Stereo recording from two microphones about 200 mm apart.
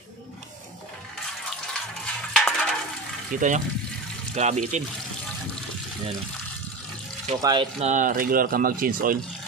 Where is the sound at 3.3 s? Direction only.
40° right (ahead or behind).